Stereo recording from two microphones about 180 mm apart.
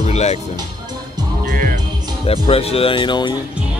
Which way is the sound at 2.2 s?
30° left (ahead or behind).